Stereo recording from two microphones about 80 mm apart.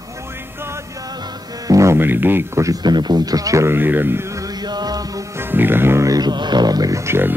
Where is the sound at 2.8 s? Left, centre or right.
Right.